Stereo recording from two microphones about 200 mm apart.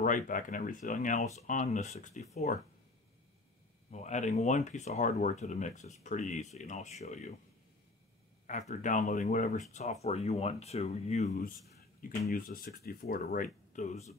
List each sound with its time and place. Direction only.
0.0 s speech: 40° left (ahead or behind)
3.9 s speech: 35° left (ahead or behind)
8.5 s speech: 40° left (ahead or behind)
12.0 s speech: 50° left (ahead or behind)